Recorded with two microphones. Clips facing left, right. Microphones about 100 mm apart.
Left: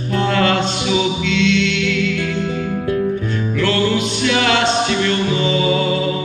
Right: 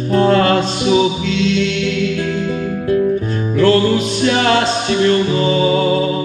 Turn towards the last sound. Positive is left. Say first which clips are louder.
# right 3 dB
turn(degrees=-35)  # may be behind; listen again after turning